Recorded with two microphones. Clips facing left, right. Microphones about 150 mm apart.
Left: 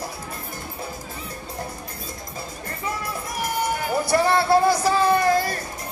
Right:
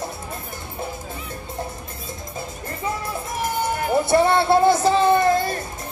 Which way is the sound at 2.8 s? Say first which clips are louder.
Right 2 dB; 25° right (ahead or behind).